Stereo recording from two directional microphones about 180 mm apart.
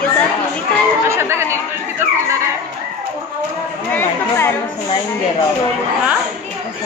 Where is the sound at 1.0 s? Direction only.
15° right (ahead or behind).